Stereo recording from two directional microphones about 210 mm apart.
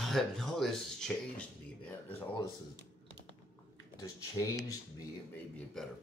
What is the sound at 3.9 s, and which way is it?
Speech, 15° left (ahead or behind).